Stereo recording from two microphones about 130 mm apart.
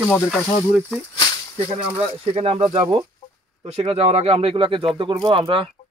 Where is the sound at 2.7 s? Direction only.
35° right (ahead or behind).